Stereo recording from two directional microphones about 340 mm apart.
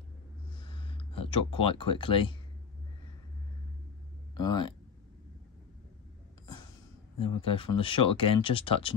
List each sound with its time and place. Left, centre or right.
0.6 s a sound: centre
4.4 s speech: centre
7.4 s speech: centre